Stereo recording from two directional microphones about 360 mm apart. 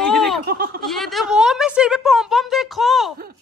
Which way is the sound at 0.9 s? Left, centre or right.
Centre.